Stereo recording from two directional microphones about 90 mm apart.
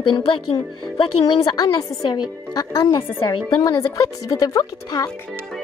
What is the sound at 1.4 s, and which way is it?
Speech, 45° left (ahead or behind).